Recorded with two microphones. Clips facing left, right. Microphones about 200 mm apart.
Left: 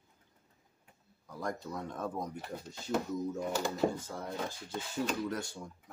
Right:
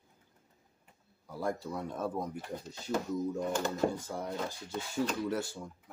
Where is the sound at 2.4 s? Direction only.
5° left (ahead or behind).